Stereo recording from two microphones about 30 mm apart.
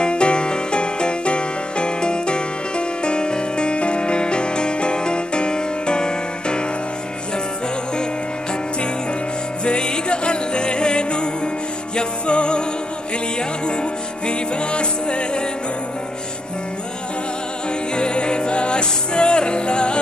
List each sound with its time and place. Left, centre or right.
0.0 s music: left
9.7 s music: left
14.2 s music: left
17.9 s music: left